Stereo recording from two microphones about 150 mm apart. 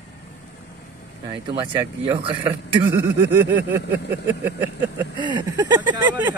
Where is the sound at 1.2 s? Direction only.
30° right (ahead or behind).